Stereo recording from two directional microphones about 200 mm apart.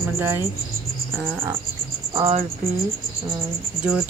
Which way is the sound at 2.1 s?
30° right (ahead or behind).